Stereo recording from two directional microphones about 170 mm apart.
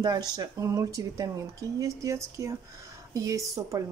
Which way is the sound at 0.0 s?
25° right (ahead or behind).